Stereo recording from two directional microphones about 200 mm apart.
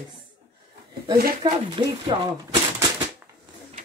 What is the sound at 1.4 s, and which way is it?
Speech, 25° right (ahead or behind).